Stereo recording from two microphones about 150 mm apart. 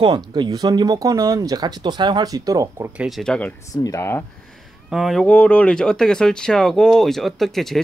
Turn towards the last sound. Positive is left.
turn(degrees=0)  # may be behind; listen again after turning